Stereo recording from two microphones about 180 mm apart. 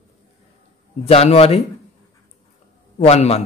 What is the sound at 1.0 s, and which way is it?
Speech, 35° left (ahead or behind).